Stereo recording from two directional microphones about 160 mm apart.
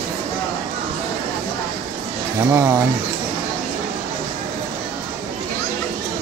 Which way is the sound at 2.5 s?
15° right (ahead or behind).